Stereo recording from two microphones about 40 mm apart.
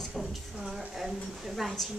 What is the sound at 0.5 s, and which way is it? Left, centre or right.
A woman's voice, centre.